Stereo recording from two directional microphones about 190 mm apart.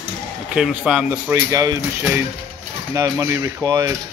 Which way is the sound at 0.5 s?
5° right (ahead or behind).